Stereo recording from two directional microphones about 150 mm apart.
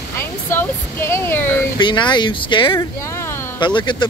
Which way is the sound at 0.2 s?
15° left (ahead or behind).